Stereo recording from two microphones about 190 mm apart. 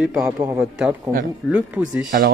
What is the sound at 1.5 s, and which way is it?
Speech, 5° right (ahead or behind).